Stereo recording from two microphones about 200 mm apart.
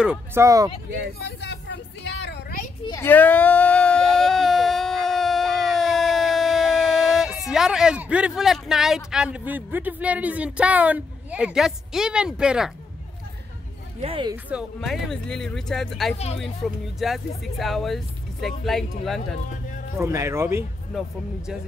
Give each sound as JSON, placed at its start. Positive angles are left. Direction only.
{"t": 0.0, "sound": "speech", "side_deg": -10}
{"t": 1.2, "sound": "vehicle", "side_deg": 60}
{"t": 2.8, "sound": "a sound", "side_deg": 15}
{"t": 14.0, "sound": "speech", "side_deg": -25}
{"t": 14.3, "sound": "speech", "side_deg": -5}
{"t": 20.0, "sound": "speech", "side_deg": -15}
{"t": 20.9, "sound": "speech", "side_deg": 0}